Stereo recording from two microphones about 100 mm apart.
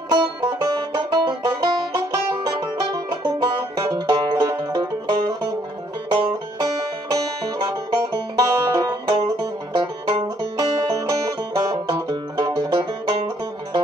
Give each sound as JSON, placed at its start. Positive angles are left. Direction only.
{"t": 0.1, "sound": "music", "side_deg": -50}